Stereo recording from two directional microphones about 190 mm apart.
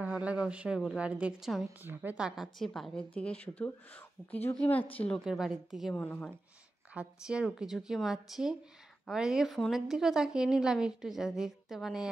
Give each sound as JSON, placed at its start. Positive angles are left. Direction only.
{"t": 0.0, "sound": "a woman's voice", "side_deg": -5}
{"t": 6.9, "sound": "a woman's voice", "side_deg": -5}